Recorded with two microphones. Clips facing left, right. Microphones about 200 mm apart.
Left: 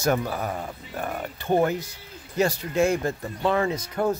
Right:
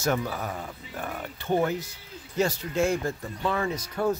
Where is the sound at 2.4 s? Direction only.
10° left (ahead or behind).